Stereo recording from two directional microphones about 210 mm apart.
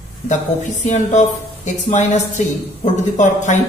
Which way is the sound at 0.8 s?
35° left (ahead or behind).